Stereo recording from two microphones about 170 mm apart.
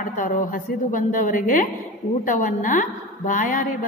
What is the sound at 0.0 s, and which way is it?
A woman's voice, 50° left (ahead or behind).